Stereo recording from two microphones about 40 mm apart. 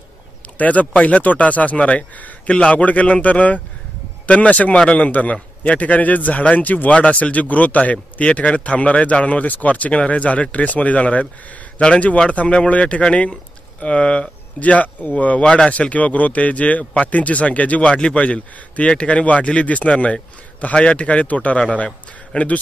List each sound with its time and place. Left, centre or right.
0.6 s a man's voice: left
14.6 s a man's voice: left
17.9 s a man's voice: left